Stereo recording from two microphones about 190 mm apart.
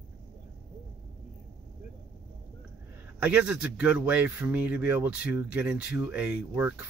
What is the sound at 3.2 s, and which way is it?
Speech, 5° right (ahead or behind).